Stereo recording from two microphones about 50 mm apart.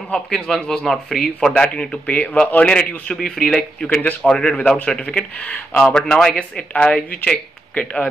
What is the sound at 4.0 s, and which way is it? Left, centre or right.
Speech, left.